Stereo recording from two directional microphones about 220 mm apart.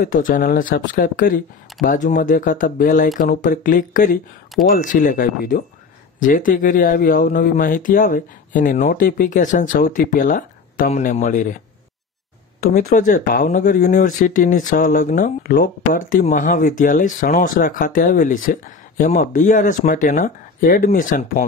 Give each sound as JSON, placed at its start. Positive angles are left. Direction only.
{"t": 0.0, "sound": "speech", "side_deg": 40}
{"t": 12.7, "sound": "speech", "side_deg": 35}